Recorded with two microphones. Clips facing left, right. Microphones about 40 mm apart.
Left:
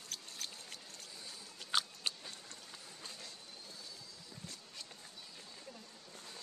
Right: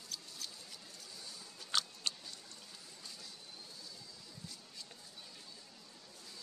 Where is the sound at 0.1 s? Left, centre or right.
Left.